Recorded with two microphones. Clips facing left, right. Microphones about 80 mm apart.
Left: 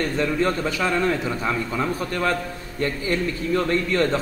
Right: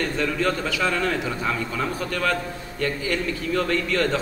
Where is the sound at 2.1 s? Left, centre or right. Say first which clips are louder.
Left 1 dB; left.